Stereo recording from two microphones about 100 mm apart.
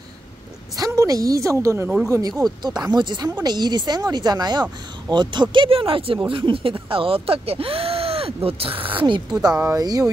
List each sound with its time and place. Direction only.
0.7 s a woman's voice: 35° right (ahead or behind); by 8.8 s 70° right (ahead or behind)
8.9 s a woman's voice: 50° right (ahead or behind)